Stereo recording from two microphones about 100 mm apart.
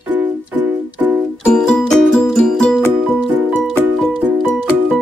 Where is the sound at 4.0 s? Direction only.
Centre (ahead or behind).